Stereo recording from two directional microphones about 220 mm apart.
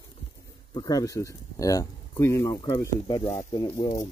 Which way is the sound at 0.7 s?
15° left (ahead or behind).